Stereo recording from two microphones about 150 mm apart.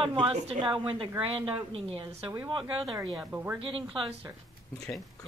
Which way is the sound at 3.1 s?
10° right (ahead or behind).